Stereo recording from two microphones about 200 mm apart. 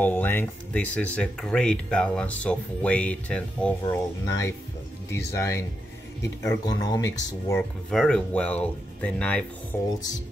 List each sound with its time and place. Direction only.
0.0 s speech: 10° left (ahead or behind)
7.9 s speech: 5° left (ahead or behind)